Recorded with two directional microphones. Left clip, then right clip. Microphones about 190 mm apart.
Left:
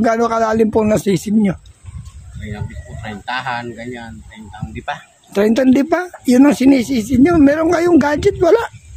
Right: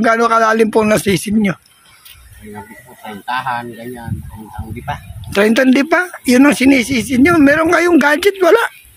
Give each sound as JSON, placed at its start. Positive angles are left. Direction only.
{"t": 0.0, "sound": "speech", "side_deg": 15}
{"t": 3.0, "sound": "a man's voice", "side_deg": 25}